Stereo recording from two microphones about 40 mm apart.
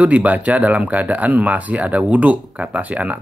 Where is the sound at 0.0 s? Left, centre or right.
Right.